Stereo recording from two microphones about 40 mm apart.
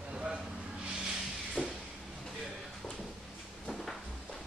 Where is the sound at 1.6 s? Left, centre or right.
Centre.